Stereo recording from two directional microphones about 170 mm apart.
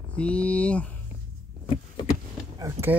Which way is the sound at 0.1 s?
5° left (ahead or behind).